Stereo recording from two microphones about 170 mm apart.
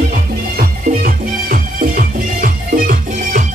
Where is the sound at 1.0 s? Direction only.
60° right (ahead or behind).